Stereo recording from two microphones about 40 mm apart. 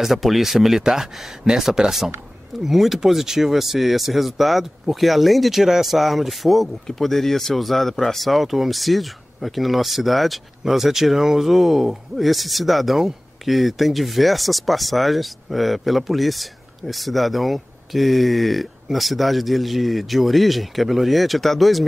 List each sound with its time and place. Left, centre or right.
0.0 s speech: centre